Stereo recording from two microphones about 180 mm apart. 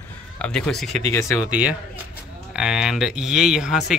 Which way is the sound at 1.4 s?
10° right (ahead or behind).